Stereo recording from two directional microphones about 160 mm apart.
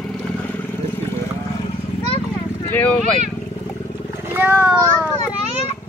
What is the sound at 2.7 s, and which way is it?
Speech, 10° left (ahead or behind).